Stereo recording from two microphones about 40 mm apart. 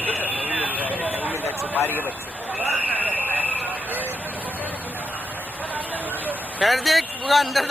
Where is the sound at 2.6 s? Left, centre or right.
Right.